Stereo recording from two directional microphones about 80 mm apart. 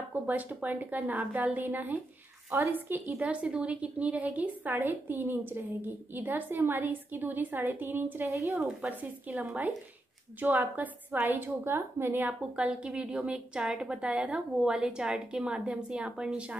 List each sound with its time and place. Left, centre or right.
0.1 s a woman's voice: right
10.4 s a woman's voice: right
12.5 s a woman's voice: centre